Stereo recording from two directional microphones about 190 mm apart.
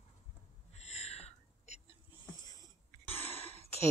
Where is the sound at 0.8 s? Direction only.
35° left (ahead or behind).